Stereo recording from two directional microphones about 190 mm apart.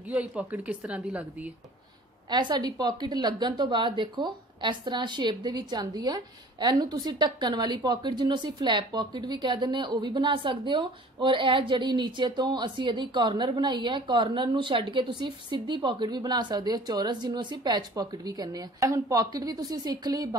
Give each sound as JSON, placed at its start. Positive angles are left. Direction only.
{"t": 0.1, "sound": "a woman's voice", "side_deg": -5}
{"t": 2.2, "sound": "a woman's voice", "side_deg": -20}